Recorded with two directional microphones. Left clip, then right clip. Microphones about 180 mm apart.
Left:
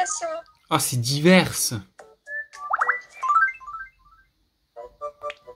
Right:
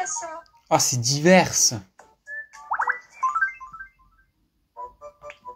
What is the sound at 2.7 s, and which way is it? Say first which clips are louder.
Music: left 2 dB; 35° left (ahead or behind).